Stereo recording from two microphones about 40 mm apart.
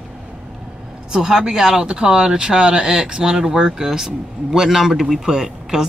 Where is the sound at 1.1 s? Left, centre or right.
Centre.